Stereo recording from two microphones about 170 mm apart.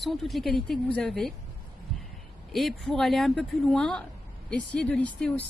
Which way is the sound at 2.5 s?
Centre (ahead or behind).